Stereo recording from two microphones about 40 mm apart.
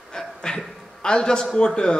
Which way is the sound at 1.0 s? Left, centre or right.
Left.